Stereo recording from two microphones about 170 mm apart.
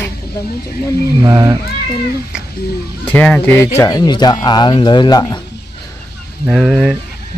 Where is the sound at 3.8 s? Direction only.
20° left (ahead or behind).